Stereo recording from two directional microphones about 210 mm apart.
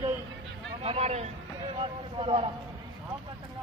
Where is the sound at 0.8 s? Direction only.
30° right (ahead or behind).